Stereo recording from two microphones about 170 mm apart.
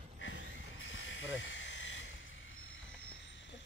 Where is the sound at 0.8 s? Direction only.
90° left.